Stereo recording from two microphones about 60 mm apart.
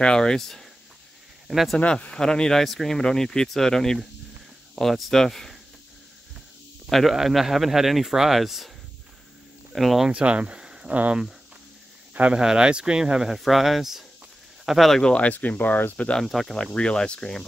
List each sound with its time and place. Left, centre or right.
0.0 s speech: centre
1.8 s speech: centre
6.9 s a man's voice: centre
10.0 s speech: centre
15.0 s speech: centre
16.0 s speech: centre
16.3 s speech: centre